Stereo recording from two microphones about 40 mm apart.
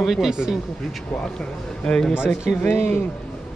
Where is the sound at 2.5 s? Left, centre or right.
Left.